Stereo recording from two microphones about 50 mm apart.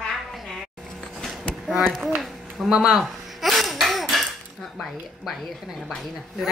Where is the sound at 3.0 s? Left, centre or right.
Centre.